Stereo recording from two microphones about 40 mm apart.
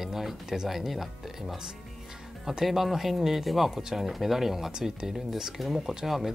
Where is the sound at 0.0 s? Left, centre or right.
Centre.